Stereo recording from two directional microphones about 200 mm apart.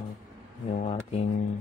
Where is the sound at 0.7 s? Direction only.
30° left (ahead or behind).